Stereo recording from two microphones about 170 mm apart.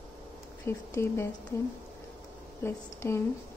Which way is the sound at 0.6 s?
15° left (ahead or behind).